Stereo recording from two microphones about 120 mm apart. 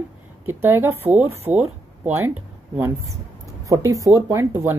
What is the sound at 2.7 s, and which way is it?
Speech, 25° right (ahead or behind).